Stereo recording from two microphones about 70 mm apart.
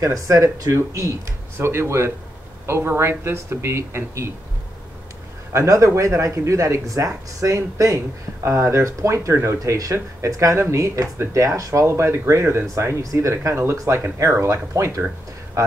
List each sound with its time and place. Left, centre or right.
0.0 s speech: right
5.5 s speech: right
9.6 s speech: right
12.7 s speech: right